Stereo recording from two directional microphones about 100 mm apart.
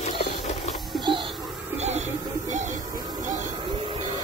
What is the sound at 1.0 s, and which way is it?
Music, 55° right (ahead or behind).